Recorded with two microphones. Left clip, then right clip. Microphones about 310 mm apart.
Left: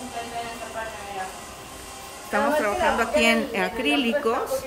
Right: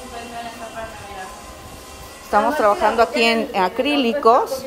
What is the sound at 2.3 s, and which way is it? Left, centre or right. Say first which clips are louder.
Speech: right 6 dB; centre.